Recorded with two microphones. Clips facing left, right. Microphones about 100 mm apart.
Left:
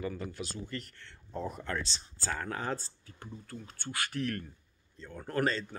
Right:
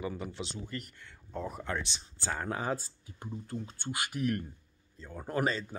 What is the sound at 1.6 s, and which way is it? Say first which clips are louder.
Speech: even; 15° right (ahead or behind).